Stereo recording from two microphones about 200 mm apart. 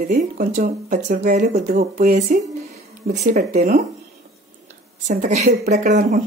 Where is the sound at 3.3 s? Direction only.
40° right (ahead or behind).